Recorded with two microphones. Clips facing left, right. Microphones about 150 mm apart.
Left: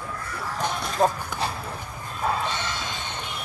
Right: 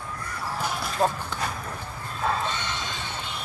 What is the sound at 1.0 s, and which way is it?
Speech, 15° left (ahead or behind).